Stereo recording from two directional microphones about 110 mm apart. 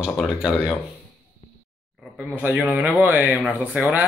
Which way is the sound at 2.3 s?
15° right (ahead or behind).